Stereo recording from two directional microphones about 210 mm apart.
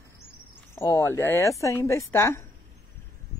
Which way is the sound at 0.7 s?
15° left (ahead or behind).